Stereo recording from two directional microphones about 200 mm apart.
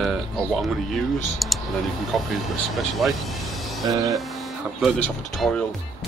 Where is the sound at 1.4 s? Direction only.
Centre (ahead or behind).